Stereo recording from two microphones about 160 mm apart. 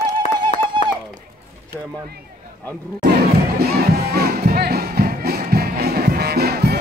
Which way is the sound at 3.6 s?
80° right.